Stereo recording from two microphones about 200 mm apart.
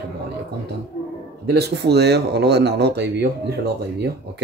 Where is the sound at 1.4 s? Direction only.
55° right (ahead or behind).